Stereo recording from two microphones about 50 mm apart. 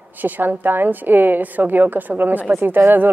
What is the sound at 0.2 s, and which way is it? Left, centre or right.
A woman's voice, right.